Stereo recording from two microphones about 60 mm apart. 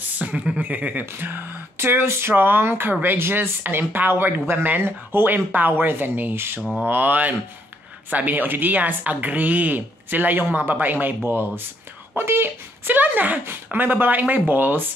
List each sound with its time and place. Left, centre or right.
0.2 s speech: right
1.1 s speech: right
6.9 s speech: right
12.8 s speech: right